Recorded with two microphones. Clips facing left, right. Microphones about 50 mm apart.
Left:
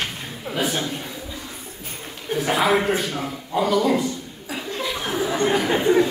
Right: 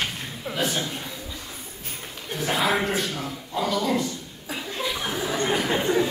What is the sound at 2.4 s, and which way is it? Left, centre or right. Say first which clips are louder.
A man's voice: left 4 dB; centre.